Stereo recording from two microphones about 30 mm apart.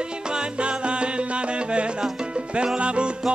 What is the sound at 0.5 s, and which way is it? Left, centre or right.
Music, right.